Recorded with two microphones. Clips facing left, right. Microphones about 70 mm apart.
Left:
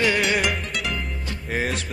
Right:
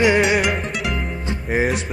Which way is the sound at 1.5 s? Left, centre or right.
Centre.